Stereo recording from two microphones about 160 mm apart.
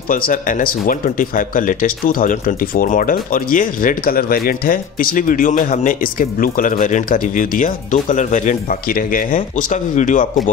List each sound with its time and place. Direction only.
0.1 s speech: 60° left (ahead or behind)